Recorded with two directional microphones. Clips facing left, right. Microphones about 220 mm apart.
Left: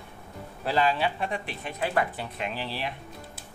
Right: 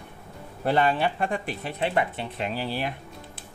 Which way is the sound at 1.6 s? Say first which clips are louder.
Right 1 dB; 30° right (ahead or behind).